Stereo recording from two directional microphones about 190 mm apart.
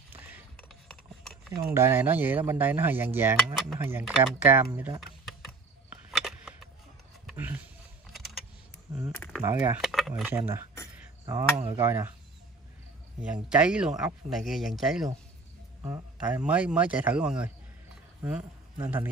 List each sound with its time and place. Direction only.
0.6 s a sound: 5° left (ahead or behind)
1.7 s speech: 15° right (ahead or behind)
6.1 s a sound: centre (ahead or behind)
8.1 s mechanisms: centre (ahead or behind)
9.4 s speech: 10° right (ahead or behind)
10.3 s speech: 15° right (ahead or behind)
13.2 s speech: 5° right (ahead or behind)
15.8 s speech: 20° right (ahead or behind)
16.4 s speech: 5° right (ahead or behind)